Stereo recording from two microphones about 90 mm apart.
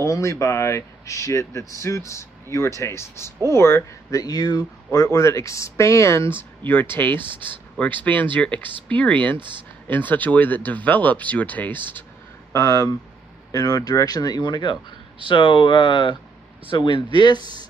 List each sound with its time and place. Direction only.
0.0 s speech: 35° left (ahead or behind)
4.2 s speech: 45° left (ahead or behind); by 7.2 s 20° left (ahead or behind)
7.2 s speech: 65° right (ahead or behind)
8.0 s speech: 20° left (ahead or behind)
9.4 s speech: 60° right (ahead or behind)
9.8 s speech: 20° left (ahead or behind)
12.5 s speech: 40° left (ahead or behind); by 17.4 s 60° left (ahead or behind)